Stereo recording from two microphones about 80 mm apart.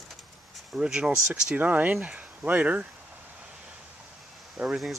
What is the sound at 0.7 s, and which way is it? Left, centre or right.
Speech, centre.